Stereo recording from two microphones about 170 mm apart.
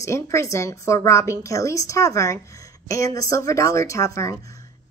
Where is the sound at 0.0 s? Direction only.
15° left (ahead or behind).